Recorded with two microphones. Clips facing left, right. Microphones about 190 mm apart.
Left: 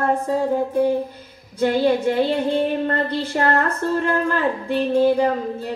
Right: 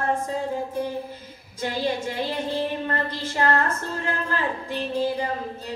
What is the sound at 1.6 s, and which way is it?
Music, 55° left (ahead or behind).